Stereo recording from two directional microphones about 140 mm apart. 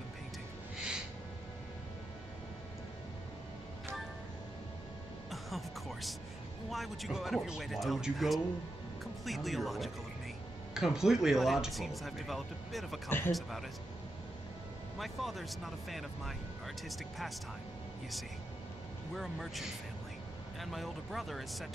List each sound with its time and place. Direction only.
0.7 s gasp: 5° right (ahead or behind)
5.3 s music: centre (ahead or behind)
6.7 s speech: centre (ahead or behind)
15.0 s speech: centre (ahead or behind)
19.1 s speech: centre (ahead or behind)